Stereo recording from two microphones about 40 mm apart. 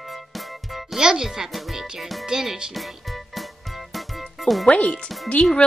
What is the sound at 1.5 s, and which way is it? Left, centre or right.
Music, centre.